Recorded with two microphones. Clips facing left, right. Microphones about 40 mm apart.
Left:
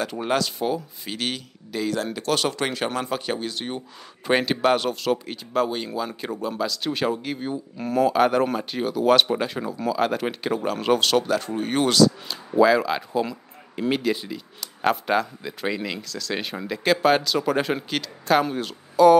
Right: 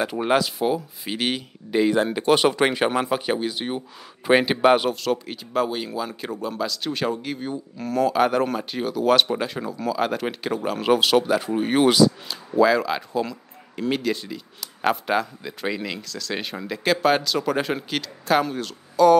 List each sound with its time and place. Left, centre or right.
0.0 s speech: centre
5.0 s speech: centre
12.3 s speech: centre
18.5 s speech: centre